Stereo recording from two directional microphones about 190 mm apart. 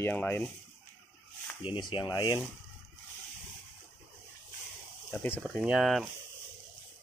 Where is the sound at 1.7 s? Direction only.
25° left (ahead or behind).